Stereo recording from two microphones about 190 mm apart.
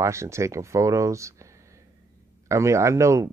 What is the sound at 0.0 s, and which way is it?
Speech, 15° right (ahead or behind).